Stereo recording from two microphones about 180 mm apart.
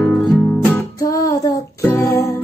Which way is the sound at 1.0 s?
20° left (ahead or behind).